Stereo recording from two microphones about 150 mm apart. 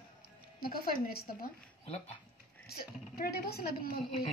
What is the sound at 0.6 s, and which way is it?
Speech, 90° left.